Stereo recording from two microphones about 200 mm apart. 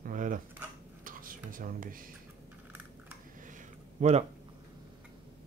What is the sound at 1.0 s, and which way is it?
Whispering, 45° right (ahead or behind).